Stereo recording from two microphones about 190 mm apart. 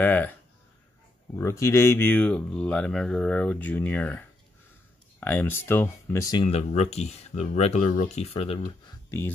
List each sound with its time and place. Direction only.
0.0 s speech: 10° left (ahead or behind)
5.2 s speech: 10° left (ahead or behind)
6.3 s speech: 30° left (ahead or behind)